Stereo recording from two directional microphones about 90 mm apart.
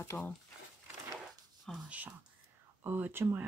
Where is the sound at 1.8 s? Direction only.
15° right (ahead or behind).